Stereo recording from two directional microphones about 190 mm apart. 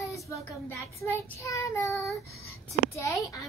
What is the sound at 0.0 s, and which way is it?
Child singing, 15° left (ahead or behind).